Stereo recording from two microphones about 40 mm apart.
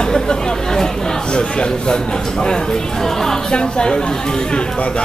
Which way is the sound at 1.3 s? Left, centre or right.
Left.